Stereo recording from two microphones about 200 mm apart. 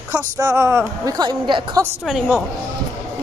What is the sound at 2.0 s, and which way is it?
Speech, centre (ahead or behind).